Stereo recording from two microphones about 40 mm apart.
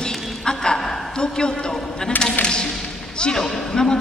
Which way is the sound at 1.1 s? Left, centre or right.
Centre.